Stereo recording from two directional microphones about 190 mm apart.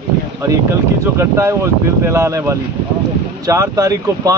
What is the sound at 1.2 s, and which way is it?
Speech, 15° right (ahead or behind).